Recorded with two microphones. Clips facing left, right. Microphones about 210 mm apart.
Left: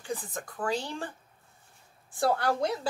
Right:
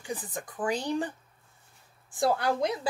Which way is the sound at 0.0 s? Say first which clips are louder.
Even; 15° right (ahead or behind).